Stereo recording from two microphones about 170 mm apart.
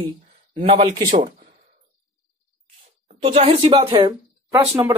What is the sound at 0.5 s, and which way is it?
Speech, 35° right (ahead or behind).